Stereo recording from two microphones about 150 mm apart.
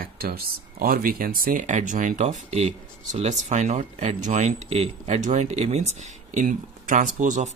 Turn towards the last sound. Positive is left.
turn(degrees=-55)  # may be behind; listen again after turning